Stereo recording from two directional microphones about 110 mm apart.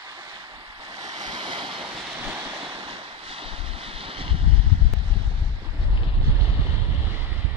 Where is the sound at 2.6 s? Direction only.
50° right (ahead or behind).